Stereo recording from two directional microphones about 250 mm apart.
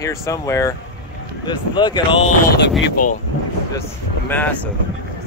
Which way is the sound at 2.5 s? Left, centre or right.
Left.